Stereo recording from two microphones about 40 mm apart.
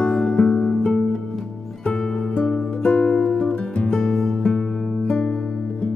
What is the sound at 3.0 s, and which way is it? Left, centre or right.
Music, centre.